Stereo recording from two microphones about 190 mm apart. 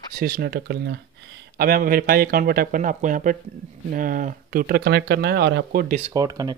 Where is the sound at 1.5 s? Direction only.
50° right (ahead or behind).